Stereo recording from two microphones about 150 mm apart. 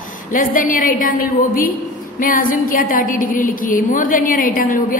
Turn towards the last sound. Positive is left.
turn(degrees=65)  # may be behind; listen again after turning